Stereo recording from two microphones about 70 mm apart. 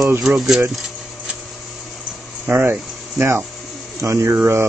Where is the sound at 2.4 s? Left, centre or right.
Right.